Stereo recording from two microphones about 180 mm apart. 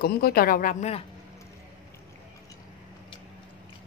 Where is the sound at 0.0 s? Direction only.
55° left (ahead or behind); by 1.0 s 40° left (ahead or behind).